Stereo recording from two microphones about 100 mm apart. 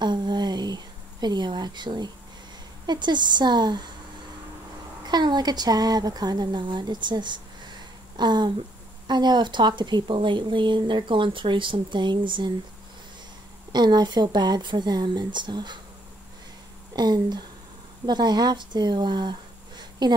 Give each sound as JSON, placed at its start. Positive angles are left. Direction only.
{"t": 0.0, "sound": "a sound", "side_deg": -45}
{"t": 2.9, "sound": "speech", "side_deg": -50}
{"t": 5.0, "sound": "speech", "side_deg": -45}
{"t": 13.7, "sound": "speech", "side_deg": -45}
{"t": 16.9, "sound": "speech", "side_deg": -45}
{"t": 19.8, "sound": "a sound", "side_deg": -45}